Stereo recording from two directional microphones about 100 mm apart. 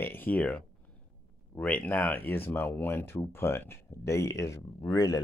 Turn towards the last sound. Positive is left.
turn(degrees=35)  # may be behind; listen again after turning